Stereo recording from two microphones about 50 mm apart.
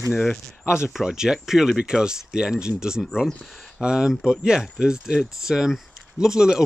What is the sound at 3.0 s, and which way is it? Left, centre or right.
Speech, centre.